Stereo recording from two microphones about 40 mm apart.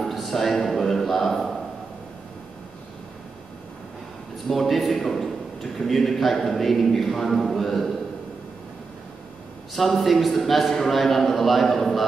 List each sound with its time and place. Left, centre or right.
0.0 s a sound: centre
4.5 s a man's voice: centre
9.8 s a man's voice: centre